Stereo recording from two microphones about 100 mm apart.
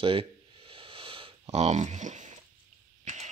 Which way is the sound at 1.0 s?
65° right (ahead or behind).